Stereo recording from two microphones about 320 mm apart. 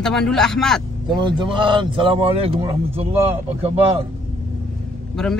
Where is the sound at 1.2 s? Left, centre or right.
Centre.